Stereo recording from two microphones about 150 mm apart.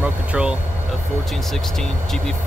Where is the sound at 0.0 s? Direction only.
5° right (ahead or behind).